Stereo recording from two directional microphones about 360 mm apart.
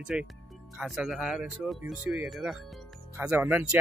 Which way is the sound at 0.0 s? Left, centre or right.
Centre.